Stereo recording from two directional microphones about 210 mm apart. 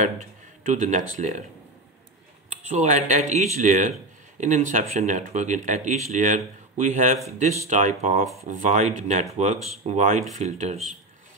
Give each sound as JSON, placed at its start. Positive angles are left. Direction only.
{"t": 0.0, "sound": "speech", "side_deg": -35}
{"t": 2.5, "sound": "speech", "side_deg": -35}